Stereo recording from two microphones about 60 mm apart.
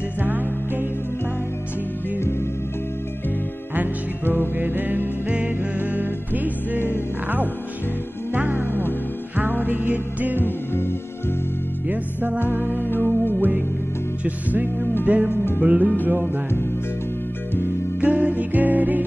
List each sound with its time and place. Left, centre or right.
0.2 s music: right
4.6 s music: right
8.3 s music: right
10.4 s music: left
11.9 s music: right
12.8 s music: left
13.4 s music: right
15.3 s music: left
15.6 s music: right
18.0 s music: right